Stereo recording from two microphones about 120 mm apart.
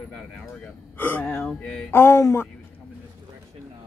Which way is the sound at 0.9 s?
15° left (ahead or behind).